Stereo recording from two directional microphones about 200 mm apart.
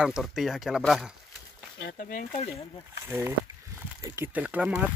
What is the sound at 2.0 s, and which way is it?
Speech, 45° left (ahead or behind).